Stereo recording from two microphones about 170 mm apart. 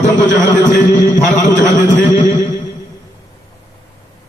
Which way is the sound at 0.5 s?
50° left (ahead or behind).